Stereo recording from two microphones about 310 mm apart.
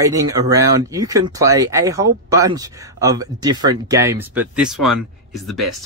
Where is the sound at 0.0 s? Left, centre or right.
Centre.